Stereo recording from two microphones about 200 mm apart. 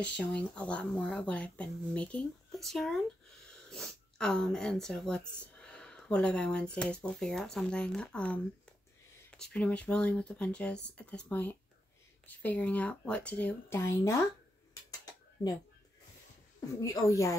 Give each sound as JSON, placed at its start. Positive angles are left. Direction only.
{"t": 0.0, "sound": "speech", "side_deg": 5}
{"t": 16.8, "sound": "speech", "side_deg": 15}